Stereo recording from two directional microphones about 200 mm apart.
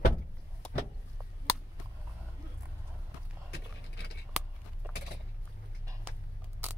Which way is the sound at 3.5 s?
55° left (ahead or behind).